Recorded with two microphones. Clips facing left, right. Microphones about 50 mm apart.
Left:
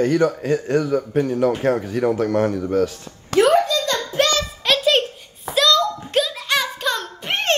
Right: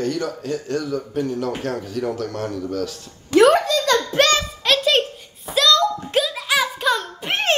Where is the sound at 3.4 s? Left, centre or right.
Right.